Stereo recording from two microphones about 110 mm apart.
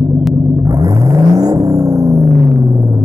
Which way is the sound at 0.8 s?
35° right (ahead or behind).